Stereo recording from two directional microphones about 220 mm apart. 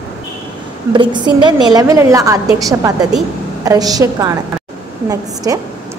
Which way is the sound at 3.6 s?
15° right (ahead or behind).